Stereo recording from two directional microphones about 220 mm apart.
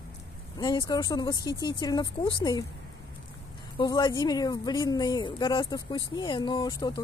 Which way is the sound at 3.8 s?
20° left (ahead or behind).